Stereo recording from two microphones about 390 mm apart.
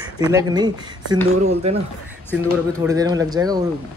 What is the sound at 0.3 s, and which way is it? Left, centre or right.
Speech, centre.